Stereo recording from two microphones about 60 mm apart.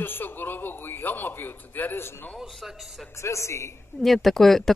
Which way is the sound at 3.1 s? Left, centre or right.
Left.